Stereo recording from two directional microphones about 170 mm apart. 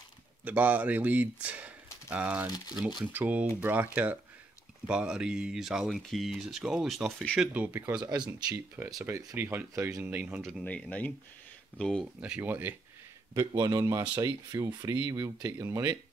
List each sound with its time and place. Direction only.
0.5 s speech: 10° right (ahead or behind)
7.5 s speech: 10° right (ahead or behind)
10.4 s speech: 5° left (ahead or behind)
12.2 s speech: 10° right (ahead or behind)
13.5 s speech: 20° right (ahead or behind)